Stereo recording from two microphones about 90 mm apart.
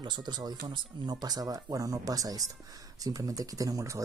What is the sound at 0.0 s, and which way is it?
Speech, 55° right (ahead or behind).